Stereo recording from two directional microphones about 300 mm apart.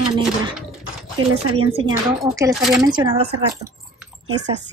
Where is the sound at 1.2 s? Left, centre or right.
Right.